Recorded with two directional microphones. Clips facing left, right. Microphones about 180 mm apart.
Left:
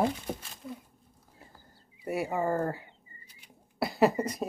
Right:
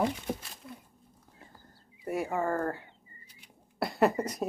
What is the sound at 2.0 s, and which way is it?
Speech, 10° left (ahead or behind).